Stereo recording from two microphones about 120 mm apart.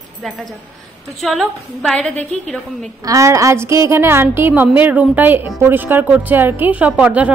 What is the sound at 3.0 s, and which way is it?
A woman's voice, 25° right (ahead or behind).